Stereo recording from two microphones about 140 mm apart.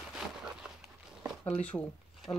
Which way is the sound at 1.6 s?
10° left (ahead or behind).